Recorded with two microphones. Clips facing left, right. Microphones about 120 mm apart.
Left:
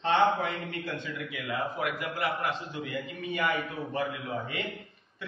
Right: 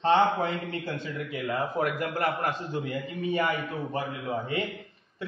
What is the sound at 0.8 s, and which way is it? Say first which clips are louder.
A man's voice: right 2 dB; 40° right (ahead or behind).